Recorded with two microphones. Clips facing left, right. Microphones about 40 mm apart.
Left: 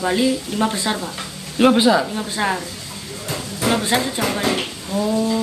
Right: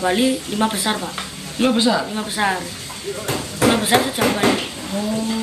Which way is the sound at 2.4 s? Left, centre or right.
Centre.